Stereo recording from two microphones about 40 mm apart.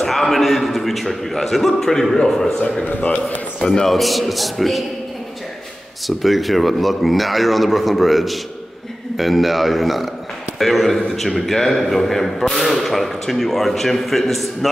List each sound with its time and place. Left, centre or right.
0.0 s a man's voice: centre
3.0 s speech: left
3.6 s a man's voice: centre
6.0 s a man's voice: centre